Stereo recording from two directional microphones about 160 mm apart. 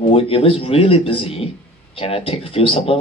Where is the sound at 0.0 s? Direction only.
35° left (ahead or behind).